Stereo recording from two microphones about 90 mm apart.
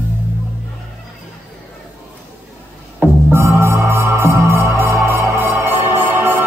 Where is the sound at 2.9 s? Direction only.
25° right (ahead or behind).